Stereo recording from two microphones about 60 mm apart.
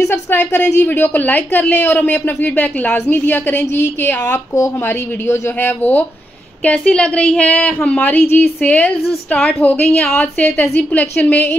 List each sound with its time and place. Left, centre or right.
0.3 s a woman's voice: left
6.8 s speech: centre